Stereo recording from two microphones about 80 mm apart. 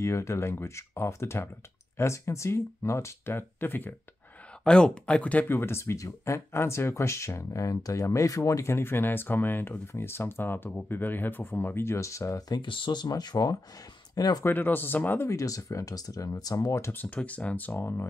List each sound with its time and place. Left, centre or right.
0.0 s speech: left
4.6 s speech: centre
5.6 s speech: left
8.7 s speech: left
12.4 s speech: left
14.4 s speech: left
15.2 s speech: left
16.9 s speech: centre